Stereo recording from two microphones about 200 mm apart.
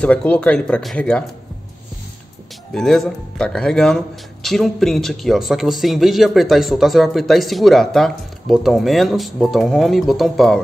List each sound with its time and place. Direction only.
0.0 s speech: 5° left (ahead or behind)
2.7 s speech: centre (ahead or behind)